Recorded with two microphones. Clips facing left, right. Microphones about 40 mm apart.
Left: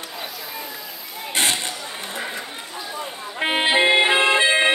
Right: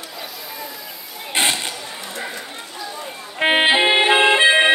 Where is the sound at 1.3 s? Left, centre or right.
Right.